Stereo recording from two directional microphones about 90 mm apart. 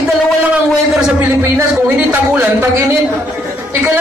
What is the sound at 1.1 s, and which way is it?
A man's voice, 25° right (ahead or behind).